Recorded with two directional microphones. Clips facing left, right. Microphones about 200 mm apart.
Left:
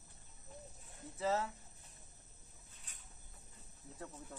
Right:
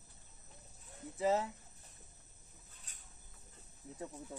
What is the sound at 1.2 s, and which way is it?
Speech, 15° right (ahead or behind).